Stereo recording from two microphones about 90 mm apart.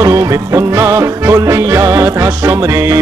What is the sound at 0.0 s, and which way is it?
Music, 35° right (ahead or behind).